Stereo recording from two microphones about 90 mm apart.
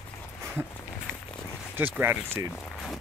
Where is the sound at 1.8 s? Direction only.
25° right (ahead or behind).